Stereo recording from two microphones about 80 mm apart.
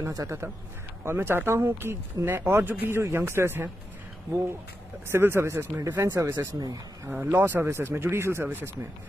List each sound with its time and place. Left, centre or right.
0.0 s speech: right
1.0 s speech: right
5.0 s speech: right
6.3 s speech: right
7.1 s speech: right